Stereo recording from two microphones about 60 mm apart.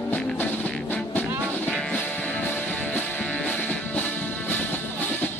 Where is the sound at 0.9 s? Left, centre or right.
Left.